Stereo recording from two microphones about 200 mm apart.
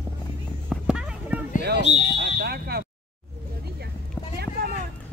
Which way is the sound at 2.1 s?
55° right (ahead or behind).